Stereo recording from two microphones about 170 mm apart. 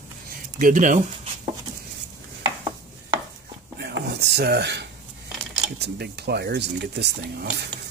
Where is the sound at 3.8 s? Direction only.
70° right (ahead or behind); by 4.9 s 90° right.